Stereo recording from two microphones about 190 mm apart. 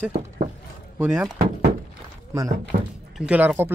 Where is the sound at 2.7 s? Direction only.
55° right (ahead or behind).